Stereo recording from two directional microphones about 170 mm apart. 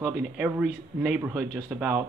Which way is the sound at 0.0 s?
10° right (ahead or behind).